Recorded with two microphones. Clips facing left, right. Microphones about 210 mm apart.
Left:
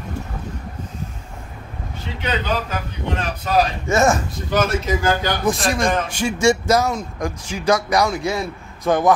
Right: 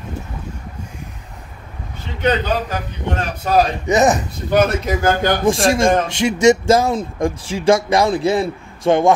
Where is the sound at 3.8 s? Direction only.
20° right (ahead or behind).